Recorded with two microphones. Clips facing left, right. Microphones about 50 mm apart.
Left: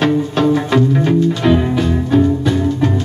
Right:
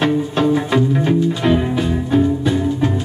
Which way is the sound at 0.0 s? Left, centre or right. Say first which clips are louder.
Left 2 dB; centre.